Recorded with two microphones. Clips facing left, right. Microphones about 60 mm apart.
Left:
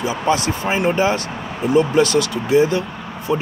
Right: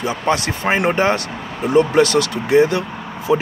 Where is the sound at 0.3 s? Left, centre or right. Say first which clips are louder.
Right 1 dB; right.